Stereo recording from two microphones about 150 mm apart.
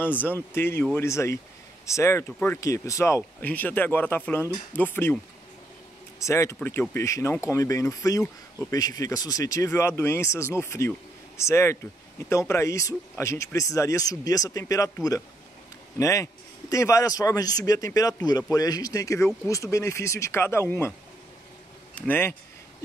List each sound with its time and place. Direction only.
0.0 s speech: 10° left (ahead or behind)
6.1 s speech: 20° left (ahead or behind)
21.9 s speech: 15° left (ahead or behind)